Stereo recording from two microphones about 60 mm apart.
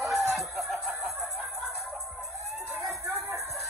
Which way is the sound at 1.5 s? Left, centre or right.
Centre.